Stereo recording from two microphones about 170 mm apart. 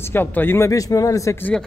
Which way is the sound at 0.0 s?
10° left (ahead or behind).